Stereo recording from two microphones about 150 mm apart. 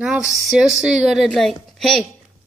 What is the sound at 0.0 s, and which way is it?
A woman's voice, 5° right (ahead or behind).